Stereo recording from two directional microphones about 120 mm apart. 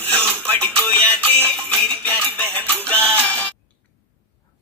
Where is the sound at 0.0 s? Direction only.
15° left (ahead or behind).